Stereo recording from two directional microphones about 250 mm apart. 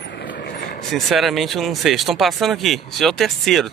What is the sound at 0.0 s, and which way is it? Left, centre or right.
Vehicle, left.